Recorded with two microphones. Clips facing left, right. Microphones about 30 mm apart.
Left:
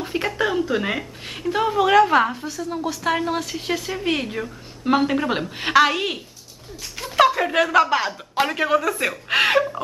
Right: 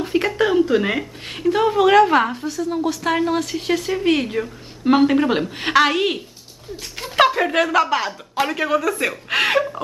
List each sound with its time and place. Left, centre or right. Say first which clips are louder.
0.0 s speech: right 4 dB; centre